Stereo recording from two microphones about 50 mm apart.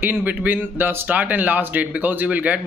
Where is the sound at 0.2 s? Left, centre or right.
Right.